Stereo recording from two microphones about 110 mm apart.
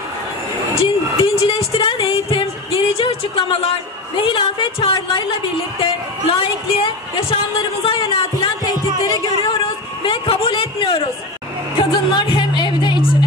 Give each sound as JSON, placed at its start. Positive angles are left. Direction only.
{"t": 0.7, "sound": "music", "side_deg": 60}
{"t": 4.2, "sound": "a woman's voice", "side_deg": 50}
{"t": 10.0, "sound": "a woman's voice", "side_deg": 55}
{"t": 11.8, "sound": "music", "side_deg": 45}